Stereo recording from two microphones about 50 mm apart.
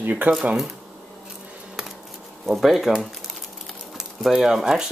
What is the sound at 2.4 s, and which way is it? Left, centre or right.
Speech, centre.